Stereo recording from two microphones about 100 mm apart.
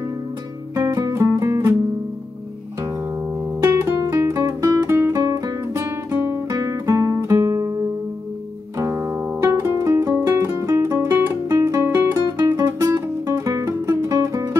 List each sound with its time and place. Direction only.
0.7 s music: 30° right (ahead or behind)
3.6 s music: 30° right (ahead or behind)
4.1 s guitar: 30° right (ahead or behind)
8.7 s music: 30° right (ahead or behind)